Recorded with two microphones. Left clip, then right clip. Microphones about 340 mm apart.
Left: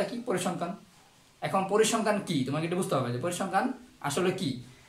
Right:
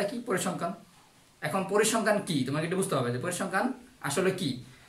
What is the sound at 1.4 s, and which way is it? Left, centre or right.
Speech, centre.